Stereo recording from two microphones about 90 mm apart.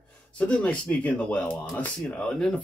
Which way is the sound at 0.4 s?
15° left (ahead or behind).